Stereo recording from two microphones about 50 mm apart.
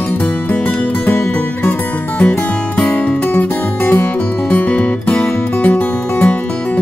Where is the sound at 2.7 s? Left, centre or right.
Left.